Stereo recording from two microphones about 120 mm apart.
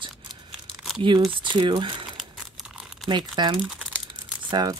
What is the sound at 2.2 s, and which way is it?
Crumpling, 5° right (ahead or behind).